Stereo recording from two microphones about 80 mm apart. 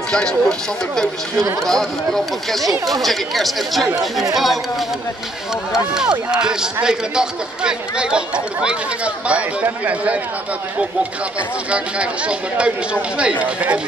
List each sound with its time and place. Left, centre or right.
0.1 s speech: centre
5.7 s speech: centre
11.7 s speech: centre